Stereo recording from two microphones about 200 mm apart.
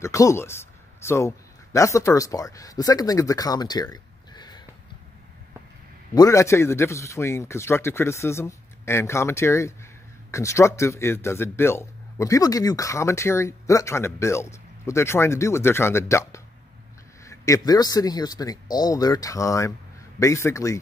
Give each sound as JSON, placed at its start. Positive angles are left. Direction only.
{"t": 0.0, "sound": "speech", "side_deg": 15}
{"t": 6.1, "sound": "speech", "side_deg": 15}